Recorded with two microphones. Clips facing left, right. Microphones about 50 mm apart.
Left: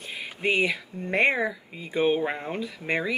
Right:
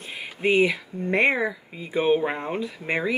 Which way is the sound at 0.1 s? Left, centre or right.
Centre.